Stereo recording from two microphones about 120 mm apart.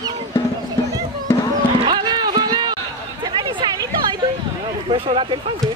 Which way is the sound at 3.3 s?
40° right (ahead or behind).